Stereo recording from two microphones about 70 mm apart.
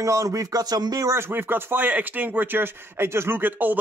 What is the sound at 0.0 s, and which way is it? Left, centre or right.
Speech, right.